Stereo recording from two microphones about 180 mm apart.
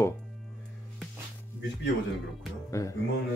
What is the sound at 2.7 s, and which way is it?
Speech, 15° left (ahead or behind).